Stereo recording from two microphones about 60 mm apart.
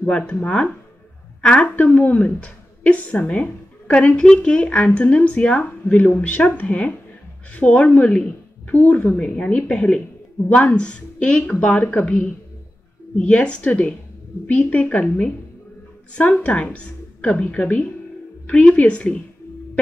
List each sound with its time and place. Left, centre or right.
0.4 s a woman's voice: left
1.8 s a woman's voice: left